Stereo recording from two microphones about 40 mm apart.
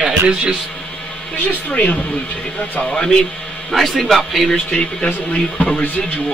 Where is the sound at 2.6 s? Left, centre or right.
Left.